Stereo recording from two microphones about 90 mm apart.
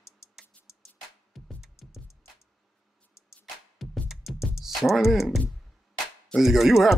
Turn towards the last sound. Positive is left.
turn(degrees=-5)  # may be behind; listen again after turning